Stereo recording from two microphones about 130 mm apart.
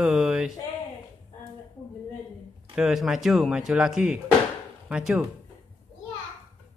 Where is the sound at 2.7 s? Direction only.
5° right (ahead or behind).